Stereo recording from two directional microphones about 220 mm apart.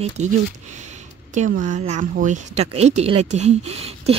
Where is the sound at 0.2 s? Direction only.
30° right (ahead or behind).